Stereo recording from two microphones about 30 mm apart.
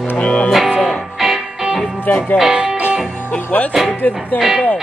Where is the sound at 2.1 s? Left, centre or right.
Left.